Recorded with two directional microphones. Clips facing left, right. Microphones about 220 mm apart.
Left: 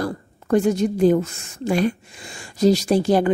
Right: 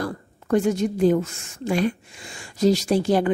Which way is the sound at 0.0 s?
35° left (ahead or behind).